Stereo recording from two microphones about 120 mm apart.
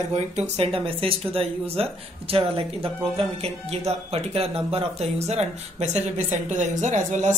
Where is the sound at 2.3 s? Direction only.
50° right (ahead or behind).